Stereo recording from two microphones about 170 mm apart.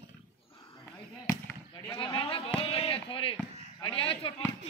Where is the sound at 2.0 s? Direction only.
30° left (ahead or behind).